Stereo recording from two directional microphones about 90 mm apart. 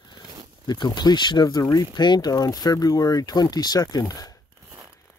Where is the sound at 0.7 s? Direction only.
50° left (ahead or behind).